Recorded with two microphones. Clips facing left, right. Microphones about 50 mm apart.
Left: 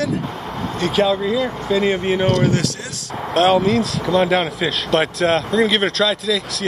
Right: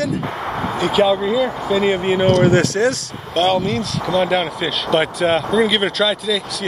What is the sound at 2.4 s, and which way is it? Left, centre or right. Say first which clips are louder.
Speech: right 4 dB; right.